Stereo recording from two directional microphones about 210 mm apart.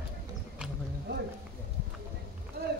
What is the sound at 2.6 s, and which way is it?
Run, 50° right (ahead or behind).